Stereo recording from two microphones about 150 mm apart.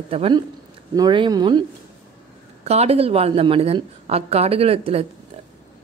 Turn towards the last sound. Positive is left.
turn(degrees=-40)  # may be behind; listen again after turning